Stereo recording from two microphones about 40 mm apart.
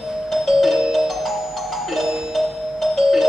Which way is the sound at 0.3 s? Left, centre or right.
Centre.